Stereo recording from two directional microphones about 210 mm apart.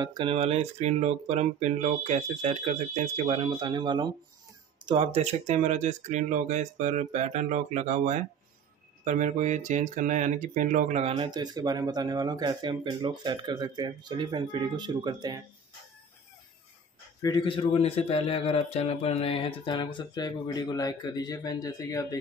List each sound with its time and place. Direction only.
0.0 s speech: 25° right (ahead or behind)
17.2 s a man's voice: 20° left (ahead or behind)